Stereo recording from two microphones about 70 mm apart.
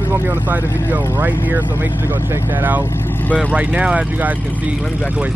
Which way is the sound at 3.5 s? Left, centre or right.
Centre.